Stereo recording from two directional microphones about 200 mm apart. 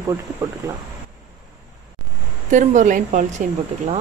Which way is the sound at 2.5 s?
40° right (ahead or behind).